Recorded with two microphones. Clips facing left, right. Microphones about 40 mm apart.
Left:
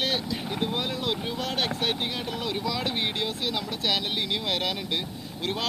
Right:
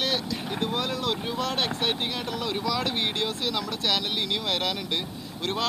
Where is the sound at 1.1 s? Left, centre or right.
Centre.